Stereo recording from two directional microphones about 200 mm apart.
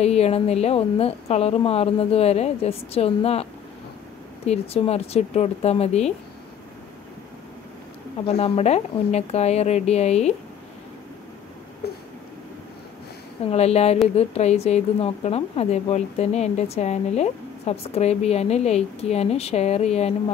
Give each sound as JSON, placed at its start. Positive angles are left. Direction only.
{"t": 0.0, "sound": "a woman's voice", "side_deg": 30}
{"t": 4.5, "sound": "a woman's voice", "side_deg": 30}
{"t": 8.3, "sound": "a woman's voice", "side_deg": 30}
{"t": 11.8, "sound": "a sound", "side_deg": 55}
{"t": 13.5, "sound": "a woman's voice", "side_deg": 30}